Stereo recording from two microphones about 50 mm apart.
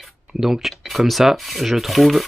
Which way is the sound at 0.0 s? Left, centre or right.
Centre.